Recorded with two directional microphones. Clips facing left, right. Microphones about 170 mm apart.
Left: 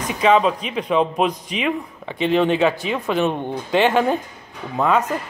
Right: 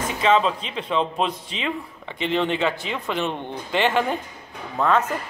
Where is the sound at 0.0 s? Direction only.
15° left (ahead or behind).